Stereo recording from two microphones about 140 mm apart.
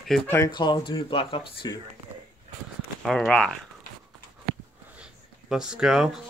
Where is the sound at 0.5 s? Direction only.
35° left (ahead or behind).